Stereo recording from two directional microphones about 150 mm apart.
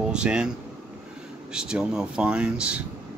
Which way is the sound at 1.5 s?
5° right (ahead or behind).